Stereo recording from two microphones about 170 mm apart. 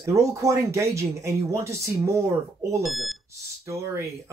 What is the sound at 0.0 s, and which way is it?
A man's voice, 20° right (ahead or behind).